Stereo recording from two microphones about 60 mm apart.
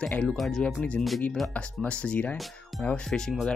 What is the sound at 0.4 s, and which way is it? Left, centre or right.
Speech, centre.